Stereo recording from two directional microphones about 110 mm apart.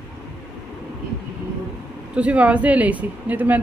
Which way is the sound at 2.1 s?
15° right (ahead or behind).